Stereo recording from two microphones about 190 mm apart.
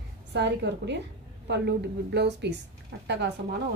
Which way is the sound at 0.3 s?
65° right (ahead or behind).